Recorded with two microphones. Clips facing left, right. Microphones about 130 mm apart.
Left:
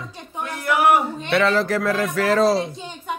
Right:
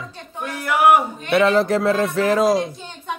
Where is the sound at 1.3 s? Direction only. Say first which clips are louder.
Right 3 dB; 25° right (ahead or behind).